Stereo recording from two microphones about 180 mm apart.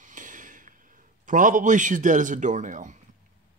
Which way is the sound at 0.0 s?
45° right (ahead or behind).